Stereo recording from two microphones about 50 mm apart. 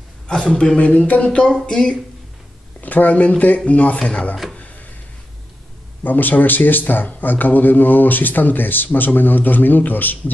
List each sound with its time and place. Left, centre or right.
0.3 s speech: left
2.8 s speech: left
6.0 s speech: left